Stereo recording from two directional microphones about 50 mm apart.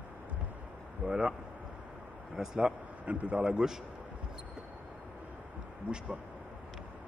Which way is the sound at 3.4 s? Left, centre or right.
Centre.